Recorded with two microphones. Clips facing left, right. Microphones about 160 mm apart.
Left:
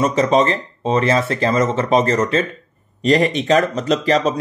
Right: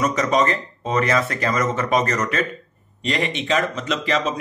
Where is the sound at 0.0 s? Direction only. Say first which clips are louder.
Left 4 dB; 30° left (ahead or behind).